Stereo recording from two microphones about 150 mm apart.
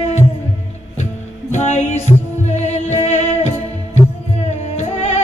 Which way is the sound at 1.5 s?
50° left (ahead or behind).